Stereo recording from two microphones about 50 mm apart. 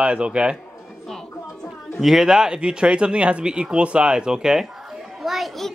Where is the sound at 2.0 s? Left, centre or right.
Centre.